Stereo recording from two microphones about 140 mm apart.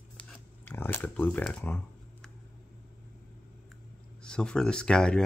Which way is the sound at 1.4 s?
10° left (ahead or behind).